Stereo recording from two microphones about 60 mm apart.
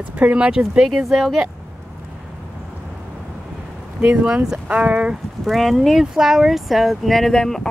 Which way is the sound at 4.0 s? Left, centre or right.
Right.